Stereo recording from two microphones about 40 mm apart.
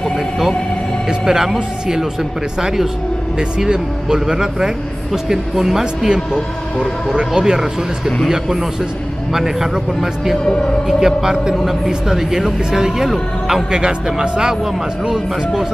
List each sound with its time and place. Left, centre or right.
1.0 s speech: centre
10.4 s speech: centre
10.9 s speech: centre